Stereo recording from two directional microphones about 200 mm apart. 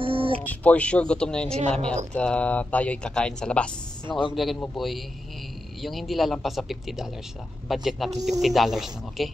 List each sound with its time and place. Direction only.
0.0 s a sound: 25° right (ahead or behind)
0.5 s speech: 5° left (ahead or behind)
1.5 s a woman's voice: 35° right (ahead or behind)
2.1 s speech: 5° left (ahead or behind)